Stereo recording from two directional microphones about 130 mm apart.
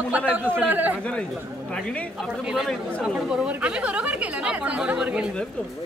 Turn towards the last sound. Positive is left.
turn(degrees=-10)  # may be behind; listen again after turning